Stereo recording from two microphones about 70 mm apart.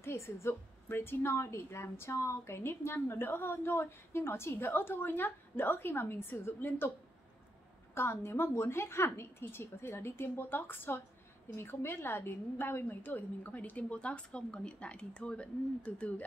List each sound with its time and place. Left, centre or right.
0.0 s a woman's voice: left
7.9 s a woman's voice: left; by 16.2 s centre